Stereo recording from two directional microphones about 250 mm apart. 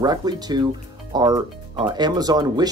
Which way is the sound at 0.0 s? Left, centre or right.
Centre.